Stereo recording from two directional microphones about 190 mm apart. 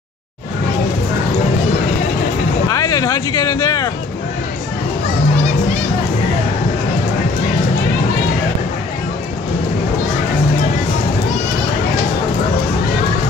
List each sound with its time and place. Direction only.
2.7 s speech: 20° left (ahead or behind)